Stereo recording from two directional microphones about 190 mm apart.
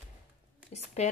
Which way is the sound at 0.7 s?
35° left (ahead or behind).